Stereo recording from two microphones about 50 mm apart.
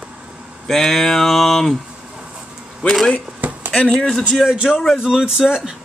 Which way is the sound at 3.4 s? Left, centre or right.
Right.